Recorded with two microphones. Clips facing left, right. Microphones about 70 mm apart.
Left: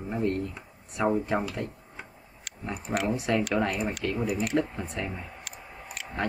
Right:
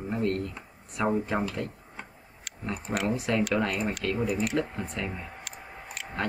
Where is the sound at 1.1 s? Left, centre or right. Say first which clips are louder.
Right 1 dB; centre.